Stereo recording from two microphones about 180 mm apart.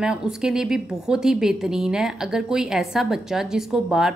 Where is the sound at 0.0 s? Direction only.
5° right (ahead or behind).